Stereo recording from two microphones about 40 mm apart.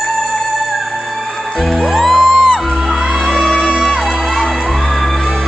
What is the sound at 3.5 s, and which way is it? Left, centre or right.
Music, left.